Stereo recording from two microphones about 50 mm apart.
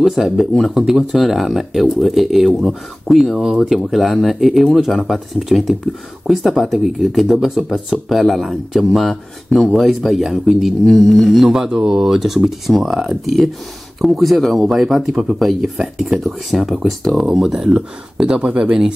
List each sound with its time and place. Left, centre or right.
0.0 s speech: centre
11.4 s speech: centre
17.3 s speech: centre